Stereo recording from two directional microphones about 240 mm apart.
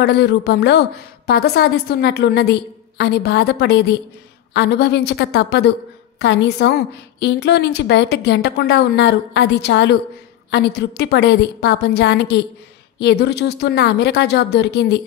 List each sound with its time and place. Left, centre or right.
0.0 s a woman's voice: left